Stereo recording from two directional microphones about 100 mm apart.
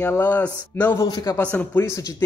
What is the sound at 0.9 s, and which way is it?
Speech, 40° left (ahead or behind).